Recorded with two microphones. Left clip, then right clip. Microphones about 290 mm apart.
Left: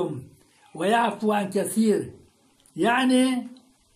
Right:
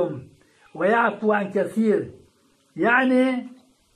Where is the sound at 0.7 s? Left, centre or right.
Left.